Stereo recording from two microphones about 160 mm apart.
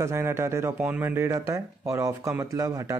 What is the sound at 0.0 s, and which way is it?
Speech, 15° right (ahead or behind).